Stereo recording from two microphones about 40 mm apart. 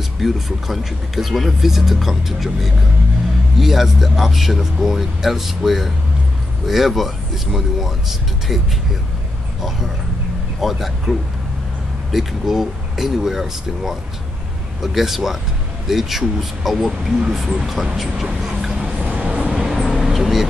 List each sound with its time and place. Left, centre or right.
0.2 s speech: centre
10.6 s speech: centre
19.0 s vehicle: right
19.5 s vehicle: centre